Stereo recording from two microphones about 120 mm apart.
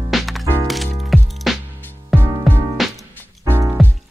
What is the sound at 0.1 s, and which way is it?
Music, centre (ahead or behind).